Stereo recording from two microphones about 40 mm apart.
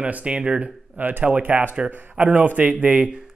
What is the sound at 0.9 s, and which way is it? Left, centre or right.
Speech, right.